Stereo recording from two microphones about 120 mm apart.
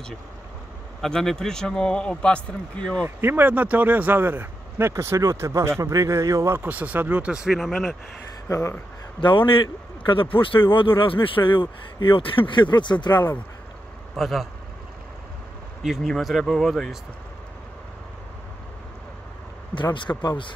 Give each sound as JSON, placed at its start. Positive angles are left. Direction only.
{"t": 1.0, "sound": "a man's voice", "side_deg": 5}
{"t": 3.2, "sound": "speech", "side_deg": -15}
{"t": 6.6, "sound": "speech", "side_deg": -15}
{"t": 8.5, "sound": "speech", "side_deg": 25}
{"t": 9.2, "sound": "speech", "side_deg": 45}
{"t": 14.1, "sound": "a man's voice", "side_deg": 0}
{"t": 15.8, "sound": "a man's voice", "side_deg": 0}
{"t": 19.7, "sound": "speech", "side_deg": 40}